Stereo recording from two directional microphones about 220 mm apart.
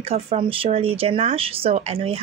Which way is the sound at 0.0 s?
25° right (ahead or behind).